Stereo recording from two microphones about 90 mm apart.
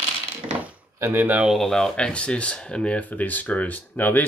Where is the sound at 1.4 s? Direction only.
Centre (ahead or behind).